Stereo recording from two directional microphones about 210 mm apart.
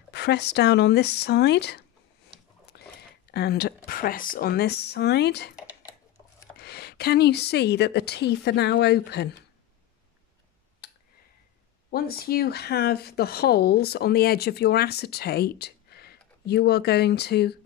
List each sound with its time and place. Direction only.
0.1 s speech: 50° left (ahead or behind)
5.7 s dishes: 10° right (ahead or behind)
6.6 s speech: 50° left (ahead or behind)
11.9 s speech: 45° left (ahead or behind)